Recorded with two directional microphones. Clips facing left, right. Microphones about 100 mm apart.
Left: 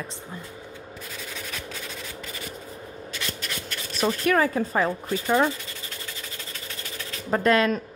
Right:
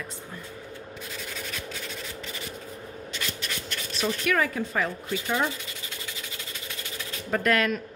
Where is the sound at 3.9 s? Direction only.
40° left (ahead or behind).